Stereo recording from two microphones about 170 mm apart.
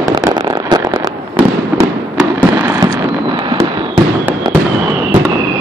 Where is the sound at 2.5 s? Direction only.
10° right (ahead or behind).